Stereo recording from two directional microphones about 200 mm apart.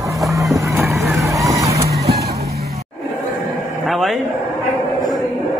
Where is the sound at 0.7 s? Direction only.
15° right (ahead or behind).